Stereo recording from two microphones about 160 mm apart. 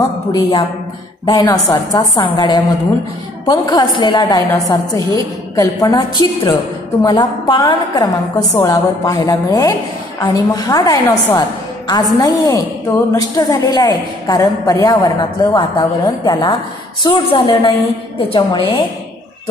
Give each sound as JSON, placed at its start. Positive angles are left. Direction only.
{"t": 0.3, "sound": "a woman's voice", "side_deg": 25}